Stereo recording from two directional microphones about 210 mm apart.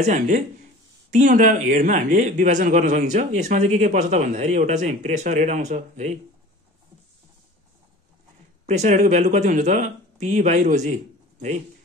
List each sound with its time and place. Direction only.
0.0 s a man's voice: 35° right (ahead or behind)
8.6 s speech: 35° right (ahead or behind)